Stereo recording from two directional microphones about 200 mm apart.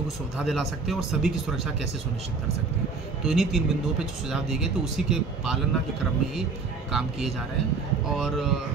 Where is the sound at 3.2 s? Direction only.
Centre (ahead or behind).